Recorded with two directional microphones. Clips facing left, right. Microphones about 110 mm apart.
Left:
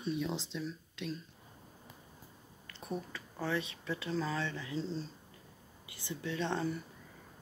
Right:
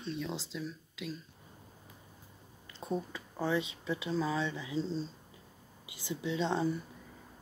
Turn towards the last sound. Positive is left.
turn(degrees=-15)  # may be behind; listen again after turning